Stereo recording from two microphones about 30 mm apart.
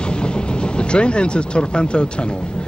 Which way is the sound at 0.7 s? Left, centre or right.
Left.